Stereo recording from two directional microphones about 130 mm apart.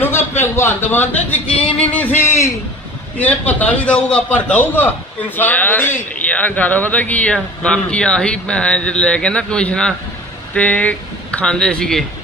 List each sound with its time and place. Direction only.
0.4 s a man's voice: 20° left (ahead or behind)